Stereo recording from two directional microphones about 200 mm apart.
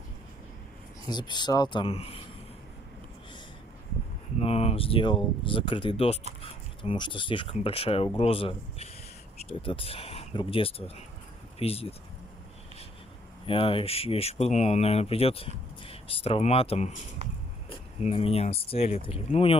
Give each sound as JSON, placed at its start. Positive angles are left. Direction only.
{"t": 1.0, "sound": "speech", "side_deg": 20}
{"t": 4.4, "sound": "speech", "side_deg": 30}
{"t": 13.5, "sound": "speech", "side_deg": 25}
{"t": 17.2, "sound": "a sound", "side_deg": -30}
{"t": 17.6, "sound": "speech", "side_deg": 30}